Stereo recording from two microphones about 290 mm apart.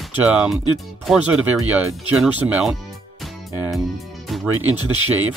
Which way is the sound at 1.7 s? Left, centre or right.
Centre.